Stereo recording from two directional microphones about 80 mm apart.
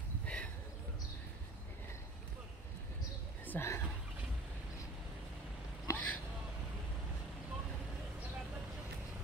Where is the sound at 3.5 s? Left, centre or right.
Left.